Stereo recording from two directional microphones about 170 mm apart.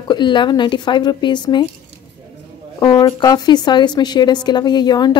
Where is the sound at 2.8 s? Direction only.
25° left (ahead or behind).